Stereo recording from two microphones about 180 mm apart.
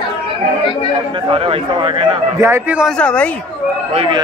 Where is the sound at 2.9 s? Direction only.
5° left (ahead or behind).